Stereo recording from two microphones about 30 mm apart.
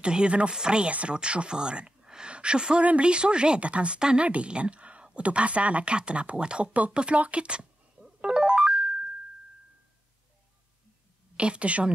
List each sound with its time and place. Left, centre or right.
0.0 s speech: right
0.8 s a woman's voice: right
7.2 s speech: right
8.4 s music: right
11.3 s speech: right